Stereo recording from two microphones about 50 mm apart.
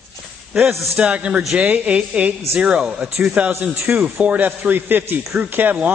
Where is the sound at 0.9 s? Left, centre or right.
Right.